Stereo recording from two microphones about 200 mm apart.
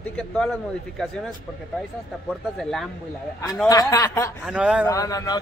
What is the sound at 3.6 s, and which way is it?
Speech, 20° left (ahead or behind).